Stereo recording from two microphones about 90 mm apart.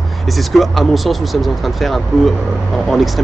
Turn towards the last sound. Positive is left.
turn(degrees=0)  # may be behind; listen again after turning